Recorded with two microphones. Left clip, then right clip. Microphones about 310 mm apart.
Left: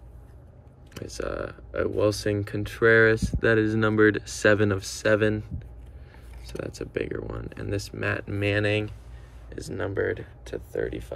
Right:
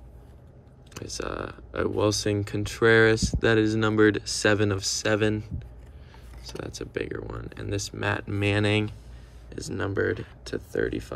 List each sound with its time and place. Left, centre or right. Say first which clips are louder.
0.9 s speech: left 1 dB; centre
6.5 s speech: left 2 dB; centre